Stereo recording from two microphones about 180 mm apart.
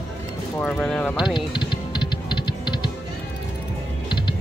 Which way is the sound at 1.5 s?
25° left (ahead or behind).